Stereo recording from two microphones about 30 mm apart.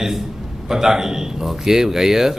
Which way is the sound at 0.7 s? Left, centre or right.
Centre.